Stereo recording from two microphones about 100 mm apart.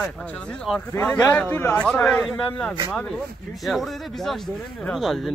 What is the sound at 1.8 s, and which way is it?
Speech, 5° left (ahead or behind).